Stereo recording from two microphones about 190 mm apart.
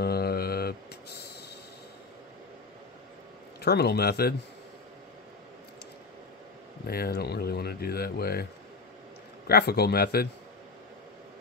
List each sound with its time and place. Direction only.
0.0 s mantra: 55° left (ahead or behind)
3.6 s speech: 60° left (ahead or behind)
6.9 s speech: 55° left (ahead or behind)
9.5 s speech: 55° left (ahead or behind)